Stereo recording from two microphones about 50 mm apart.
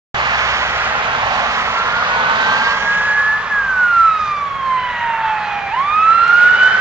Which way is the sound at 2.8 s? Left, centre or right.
Right.